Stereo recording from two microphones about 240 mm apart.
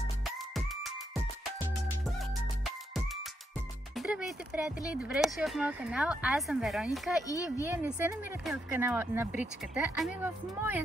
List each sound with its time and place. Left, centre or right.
0.2 s music: centre
3.9 s speech: centre
7.2 s speech: centre
7.6 s speech: centre